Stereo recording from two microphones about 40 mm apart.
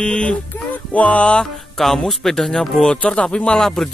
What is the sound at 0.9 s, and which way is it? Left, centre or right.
Speech, left.